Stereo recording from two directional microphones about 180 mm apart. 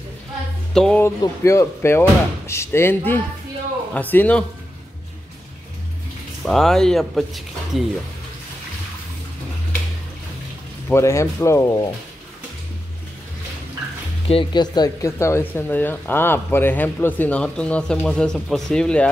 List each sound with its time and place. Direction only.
0.7 s speech: 5° left (ahead or behind)
1.0 s speech: 15° left (ahead or behind)
6.4 s speech: centre (ahead or behind)
10.9 s speech: 15° left (ahead or behind)
14.2 s speech: 30° left (ahead or behind); by 19.0 s 5° left (ahead or behind)